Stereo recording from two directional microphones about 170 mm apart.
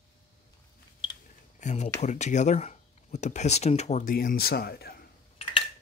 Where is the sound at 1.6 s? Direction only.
45° left (ahead or behind); by 5.0 s 65° left (ahead or behind).